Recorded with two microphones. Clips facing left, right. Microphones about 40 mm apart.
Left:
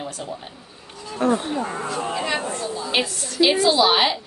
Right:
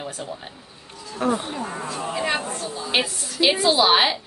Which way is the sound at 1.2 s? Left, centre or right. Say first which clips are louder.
Left 3 dB; centre.